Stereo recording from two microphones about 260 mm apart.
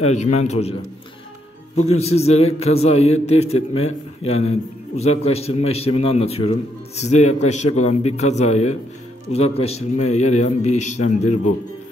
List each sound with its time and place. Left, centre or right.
0.0 s a man's voice: left
2.0 s a man's voice: left